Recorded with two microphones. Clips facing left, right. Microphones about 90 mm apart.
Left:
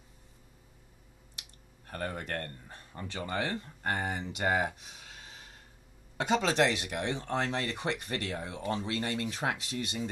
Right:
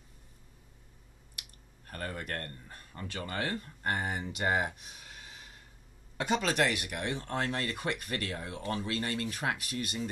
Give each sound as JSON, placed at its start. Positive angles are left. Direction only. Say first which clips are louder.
{"t": 1.9, "sound": "speech", "louder": "left 2 dB", "side_deg": 25}